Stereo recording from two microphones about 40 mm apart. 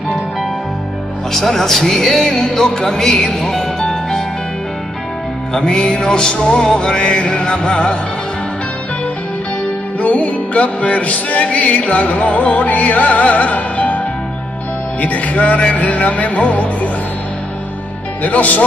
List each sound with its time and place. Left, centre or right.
1.3 s speech: centre
5.5 s music: centre
9.9 s music: left
18.2 s music: left